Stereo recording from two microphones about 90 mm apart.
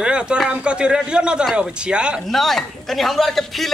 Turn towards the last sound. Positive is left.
turn(degrees=0)  # may be behind; listen again after turning